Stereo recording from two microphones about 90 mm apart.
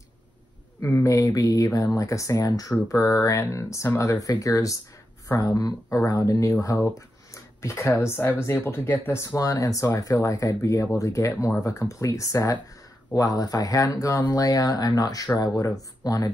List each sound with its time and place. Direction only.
0.8 s speech: 30° left (ahead or behind)
7.3 s a sound: 30° left (ahead or behind)
7.9 s speech: 30° left (ahead or behind)